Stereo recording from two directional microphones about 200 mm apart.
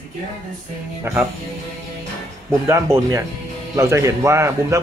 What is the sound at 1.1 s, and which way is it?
Speech, 15° right (ahead or behind).